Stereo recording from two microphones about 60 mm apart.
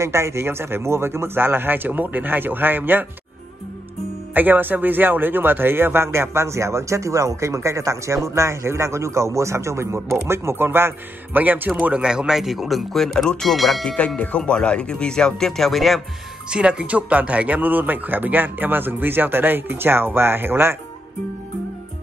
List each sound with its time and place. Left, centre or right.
0.0 s speech: right
4.3 s speech: right
11.4 s a man's voice: right
11.8 s speech: centre
13.8 s speech: left; by 16.0 s centre
16.4 s speech: centre; by 20.7 s right